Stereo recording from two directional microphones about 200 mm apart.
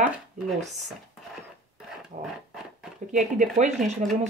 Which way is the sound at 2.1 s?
40° right (ahead or behind).